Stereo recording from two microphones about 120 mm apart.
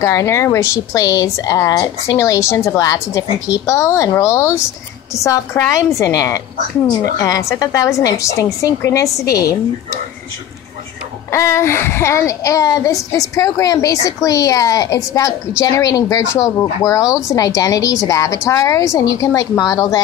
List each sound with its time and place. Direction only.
0.0 s a child's voice: 25° left (ahead or behind)
11.3 s a child's voice: 25° left (ahead or behind)